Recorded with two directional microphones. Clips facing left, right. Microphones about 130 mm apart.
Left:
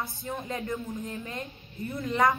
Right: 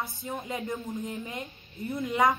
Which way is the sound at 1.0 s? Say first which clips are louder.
Even; 20° right (ahead or behind).